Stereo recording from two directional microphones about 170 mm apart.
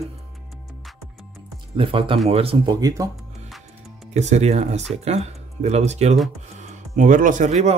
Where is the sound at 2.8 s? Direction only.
20° right (ahead or behind).